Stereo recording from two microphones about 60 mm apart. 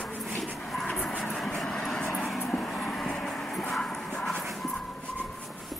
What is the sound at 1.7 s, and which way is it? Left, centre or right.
Vehicle, centre.